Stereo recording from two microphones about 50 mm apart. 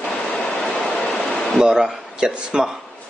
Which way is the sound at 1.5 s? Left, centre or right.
Centre.